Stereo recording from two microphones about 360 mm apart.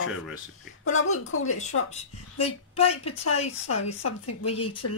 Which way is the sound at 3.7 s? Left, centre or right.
Left.